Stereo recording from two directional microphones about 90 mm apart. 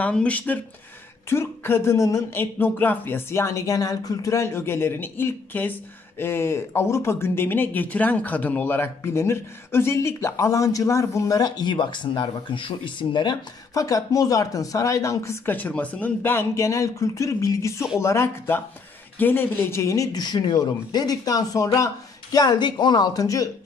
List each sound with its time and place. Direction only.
0.0 s speech: 15° left (ahead or behind)
1.3 s speech: 30° left (ahead or behind)
2.3 s speech: 20° left (ahead or behind); by 13.4 s 55° left (ahead or behind)
13.7 s speech: 40° left (ahead or behind)
15.4 s speech: 20° left (ahead or behind)
19.8 s speech: 35° left (ahead or behind)
20.2 s speech: 50° left (ahead or behind)